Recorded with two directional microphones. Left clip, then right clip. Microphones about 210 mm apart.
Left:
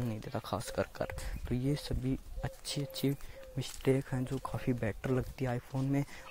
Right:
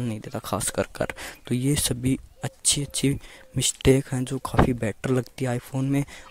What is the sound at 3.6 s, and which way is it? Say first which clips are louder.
Speech: right 12 dB; 50° right (ahead or behind).